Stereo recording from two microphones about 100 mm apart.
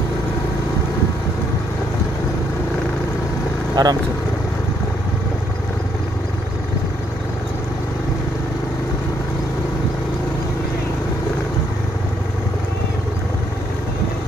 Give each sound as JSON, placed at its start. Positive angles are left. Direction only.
{"t": 3.8, "sound": "speech", "side_deg": -40}